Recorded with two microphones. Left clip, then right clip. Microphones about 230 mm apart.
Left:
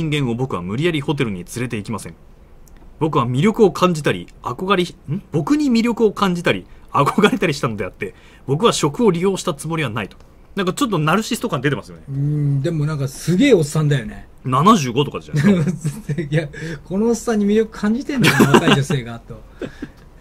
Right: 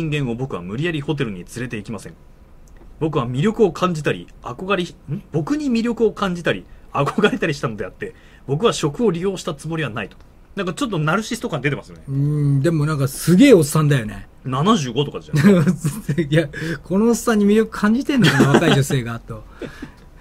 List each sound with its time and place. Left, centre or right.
0.0 s speech: left
12.4 s speech: right
14.4 s speech: left
15.3 s speech: right
18.2 s speech: left
18.8 s speech: right